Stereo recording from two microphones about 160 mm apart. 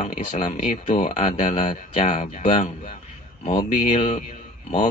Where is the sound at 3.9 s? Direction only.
45° left (ahead or behind).